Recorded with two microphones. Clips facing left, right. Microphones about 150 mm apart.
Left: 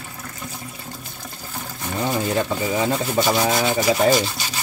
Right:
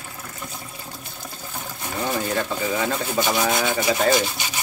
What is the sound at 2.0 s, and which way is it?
Speech, 20° left (ahead or behind).